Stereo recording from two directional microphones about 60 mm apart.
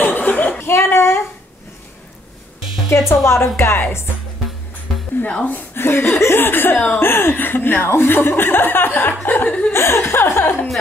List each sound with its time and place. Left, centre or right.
0.0 s a sound: left
0.6 s a sound: left
2.9 s speech: left
5.2 s a woman's voice: left
5.8 s speech: left
9.7 s speech: left